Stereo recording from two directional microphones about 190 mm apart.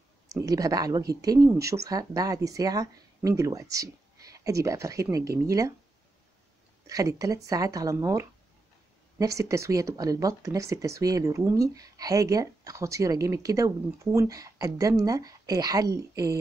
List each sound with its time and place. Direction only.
0.3 s speech: 20° right (ahead or behind)
6.9 s a woman's voice: 20° right (ahead or behind)